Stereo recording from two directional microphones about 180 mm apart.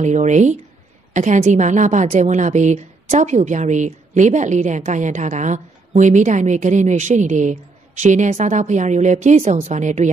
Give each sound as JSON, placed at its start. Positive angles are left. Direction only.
{"t": 0.0, "sound": "a woman's voice", "side_deg": -40}